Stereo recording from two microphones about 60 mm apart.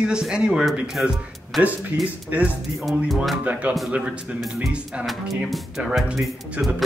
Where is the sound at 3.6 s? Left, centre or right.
Right.